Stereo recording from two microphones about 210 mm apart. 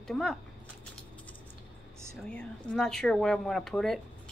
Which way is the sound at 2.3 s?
5° left (ahead or behind).